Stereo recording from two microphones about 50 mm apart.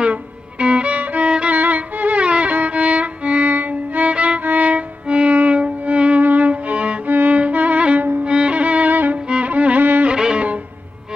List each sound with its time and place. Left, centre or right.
0.0 s music: right
7.1 s music: right
7.3 s music: right
10.0 s music: centre